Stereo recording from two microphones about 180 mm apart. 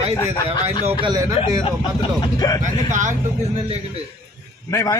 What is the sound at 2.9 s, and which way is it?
Speech, 45° right (ahead or behind).